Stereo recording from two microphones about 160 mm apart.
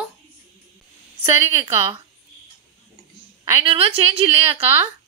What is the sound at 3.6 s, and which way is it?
Speech, 35° right (ahead or behind).